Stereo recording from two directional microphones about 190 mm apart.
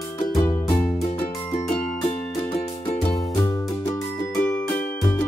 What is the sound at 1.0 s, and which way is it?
Music, 35° left (ahead or behind).